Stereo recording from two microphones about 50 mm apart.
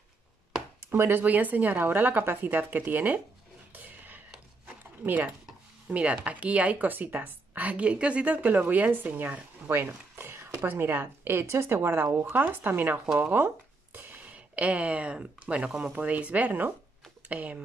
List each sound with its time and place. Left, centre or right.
0.8 s speech: right
1.2 s a woman's voice: right
3.7 s a sound: right
5.9 s a woman's voice: right
8.4 s a woman's voice: right
9.8 s a sound: right
10.6 s a woman's voice: right
11.4 s a woman's voice: right
13.9 s a sound: right
14.3 s a woman's voice: right